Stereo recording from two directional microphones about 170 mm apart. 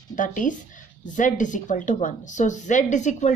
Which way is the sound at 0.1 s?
50° left (ahead or behind).